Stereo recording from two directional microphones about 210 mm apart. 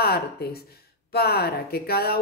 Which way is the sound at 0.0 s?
50° left (ahead or behind).